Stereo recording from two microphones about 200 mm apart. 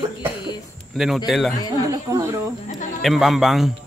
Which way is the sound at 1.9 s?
15° right (ahead or behind).